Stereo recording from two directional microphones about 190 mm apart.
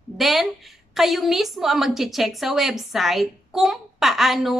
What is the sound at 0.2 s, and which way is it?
A woman's voice, centre (ahead or behind).